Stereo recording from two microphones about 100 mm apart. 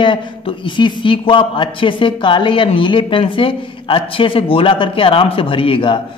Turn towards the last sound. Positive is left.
turn(degrees=60)  # may be behind; listen again after turning